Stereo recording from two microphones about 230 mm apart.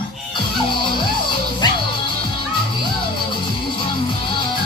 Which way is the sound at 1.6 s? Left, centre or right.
Centre.